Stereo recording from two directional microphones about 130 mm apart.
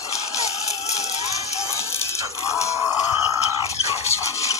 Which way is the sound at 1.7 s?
20° left (ahead or behind).